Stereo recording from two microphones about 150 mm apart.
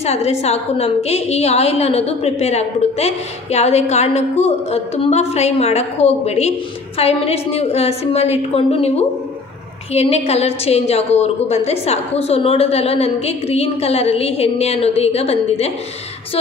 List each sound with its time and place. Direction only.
0.0 s a woman's voice: 45° left (ahead or behind)